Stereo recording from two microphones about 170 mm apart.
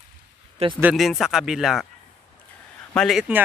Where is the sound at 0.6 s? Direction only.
35° right (ahead or behind).